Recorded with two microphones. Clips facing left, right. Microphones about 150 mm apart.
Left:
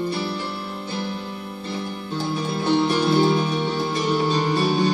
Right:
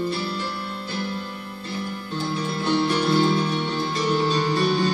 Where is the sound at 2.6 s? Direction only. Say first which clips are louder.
Left 2 dB; 20° left (ahead or behind).